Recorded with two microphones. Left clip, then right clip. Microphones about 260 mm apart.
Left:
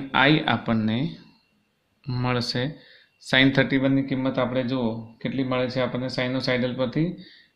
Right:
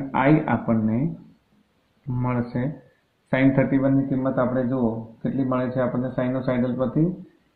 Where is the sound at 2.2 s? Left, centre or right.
Left.